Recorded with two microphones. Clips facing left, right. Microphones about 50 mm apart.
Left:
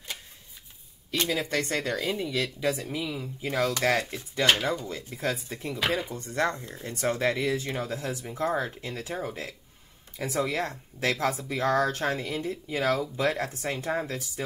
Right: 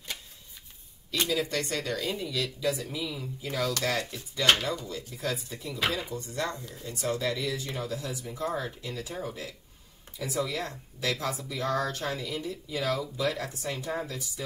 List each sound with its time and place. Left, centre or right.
1.3 s speech: left
6.5 s speech: left
6.8 s speech: left